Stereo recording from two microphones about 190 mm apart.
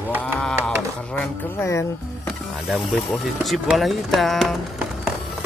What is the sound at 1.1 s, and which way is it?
Speech, 15° left (ahead or behind).